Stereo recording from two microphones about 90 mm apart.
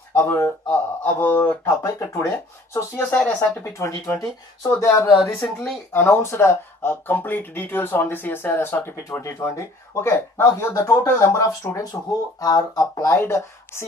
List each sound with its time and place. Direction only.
0.1 s speech: 30° left (ahead or behind)
1.0 s speech: 20° left (ahead or behind)
1.8 s speech: 35° left (ahead or behind)
3.0 s speech: 15° left (ahead or behind); by 5.1 s 35° left (ahead or behind)
5.4 s speech: 5° left (ahead or behind)
5.9 s speech: 25° left (ahead or behind)